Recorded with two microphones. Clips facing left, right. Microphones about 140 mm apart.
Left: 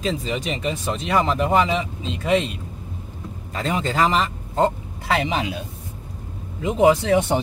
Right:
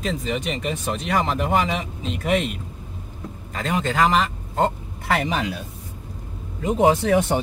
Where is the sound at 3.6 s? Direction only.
35° left (ahead or behind).